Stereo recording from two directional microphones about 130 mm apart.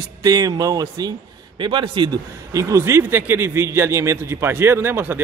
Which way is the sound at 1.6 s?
40° right (ahead or behind).